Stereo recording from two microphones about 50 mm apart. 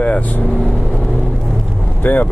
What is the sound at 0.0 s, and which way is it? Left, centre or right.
Speech, left.